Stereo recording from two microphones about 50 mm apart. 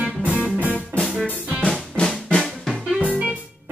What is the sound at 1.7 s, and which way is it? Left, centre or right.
Drum, centre.